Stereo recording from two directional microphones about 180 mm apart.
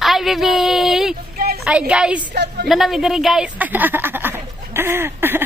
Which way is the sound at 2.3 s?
70° right (ahead or behind).